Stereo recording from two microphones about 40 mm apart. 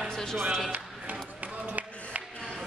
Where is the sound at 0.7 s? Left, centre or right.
Right.